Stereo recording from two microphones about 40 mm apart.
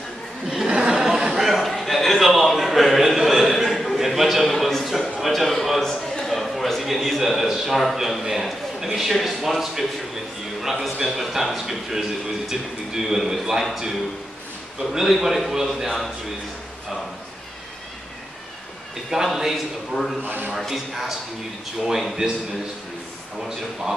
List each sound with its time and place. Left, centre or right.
0.5 s a sound: centre
8.7 s a man's voice: centre
14.8 s a man's voice: centre
19.0 s a man's voice: centre
22.2 s a man's voice: centre